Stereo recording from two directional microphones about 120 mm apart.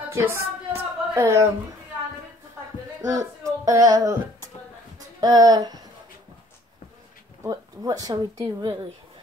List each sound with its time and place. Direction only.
0.1 s a sound: 20° right (ahead or behind)
3.0 s female singing: 25° right (ahead or behind)
5.2 s speech: 30° right (ahead or behind)
7.4 s speech: 30° right (ahead or behind)